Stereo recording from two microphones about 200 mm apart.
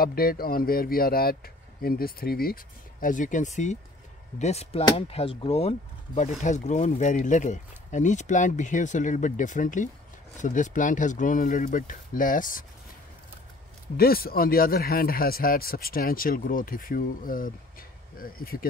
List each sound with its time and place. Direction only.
0.0 s speech: 50° left (ahead or behind)
13.9 s speech: 50° left (ahead or behind)